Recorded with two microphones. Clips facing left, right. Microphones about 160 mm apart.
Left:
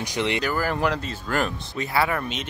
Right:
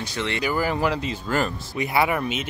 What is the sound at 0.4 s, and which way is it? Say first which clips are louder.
Speech: right 1 dB; 10° right (ahead or behind).